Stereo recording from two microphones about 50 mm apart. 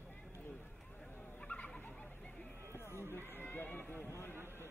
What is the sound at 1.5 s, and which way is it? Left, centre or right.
Turkey, left.